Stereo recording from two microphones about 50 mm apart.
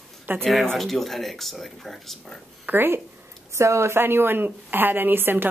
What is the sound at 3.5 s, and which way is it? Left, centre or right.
A woman's voice, right.